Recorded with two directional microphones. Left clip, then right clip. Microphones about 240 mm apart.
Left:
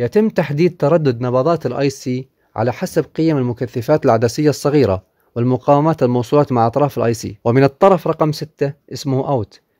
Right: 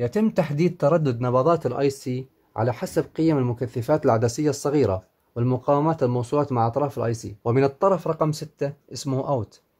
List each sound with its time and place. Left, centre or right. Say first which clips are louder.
0.0 s speech: left 7 dB; left